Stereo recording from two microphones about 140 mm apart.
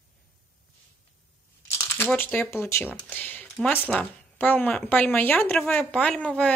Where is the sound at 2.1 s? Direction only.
15° left (ahead or behind).